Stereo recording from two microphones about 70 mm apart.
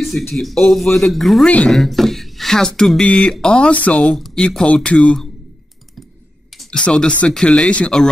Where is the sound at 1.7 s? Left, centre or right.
Centre.